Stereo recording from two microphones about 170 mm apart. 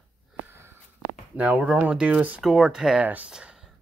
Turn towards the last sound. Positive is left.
turn(degrees=-5)  # may be behind; listen again after turning